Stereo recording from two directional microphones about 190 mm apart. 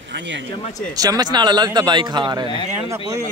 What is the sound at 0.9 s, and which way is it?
A man's voice, 20° right (ahead or behind).